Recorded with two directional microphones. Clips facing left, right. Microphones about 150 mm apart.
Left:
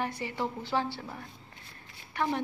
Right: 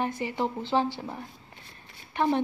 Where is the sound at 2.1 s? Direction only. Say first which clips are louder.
Right 5 dB; 25° right (ahead or behind).